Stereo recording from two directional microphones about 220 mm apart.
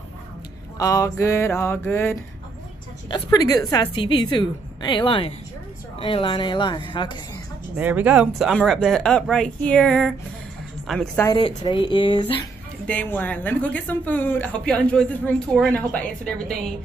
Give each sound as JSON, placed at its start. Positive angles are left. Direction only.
{"t": 0.7, "sound": "a woman's voice", "side_deg": 15}
{"t": 7.7, "sound": "speech", "side_deg": -5}
{"t": 11.2, "sound": "a woman's voice", "side_deg": 20}
{"t": 12.8, "sound": "speech", "side_deg": 5}